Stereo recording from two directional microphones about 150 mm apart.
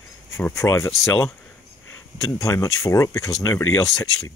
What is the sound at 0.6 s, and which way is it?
Speech, 15° left (ahead or behind).